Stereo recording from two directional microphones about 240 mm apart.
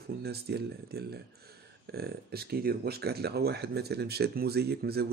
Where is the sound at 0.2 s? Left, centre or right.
Right.